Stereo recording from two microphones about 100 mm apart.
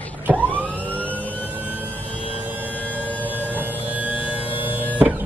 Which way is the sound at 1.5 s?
15° right (ahead or behind).